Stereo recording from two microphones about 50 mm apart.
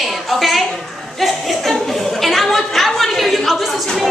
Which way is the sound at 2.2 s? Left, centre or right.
Centre.